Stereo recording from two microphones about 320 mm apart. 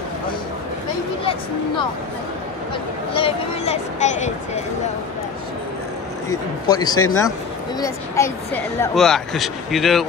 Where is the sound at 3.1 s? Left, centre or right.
Centre.